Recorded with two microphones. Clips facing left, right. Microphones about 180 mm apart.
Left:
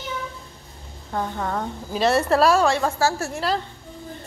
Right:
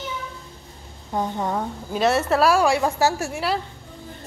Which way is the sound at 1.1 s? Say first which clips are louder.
Right 2 dB; 20° right (ahead or behind).